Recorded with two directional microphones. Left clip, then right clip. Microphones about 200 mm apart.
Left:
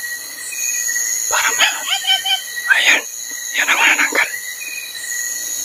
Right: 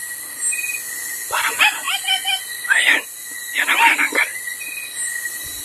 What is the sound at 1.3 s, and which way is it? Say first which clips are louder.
Dog: left 3 dB; 5° left (ahead or behind).